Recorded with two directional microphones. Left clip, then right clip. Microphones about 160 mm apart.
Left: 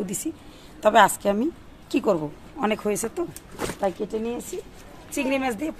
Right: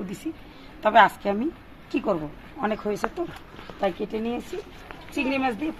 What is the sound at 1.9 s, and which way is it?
Speech, 90° left.